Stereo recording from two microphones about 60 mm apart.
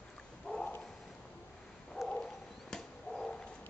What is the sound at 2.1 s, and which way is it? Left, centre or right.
Bird, centre.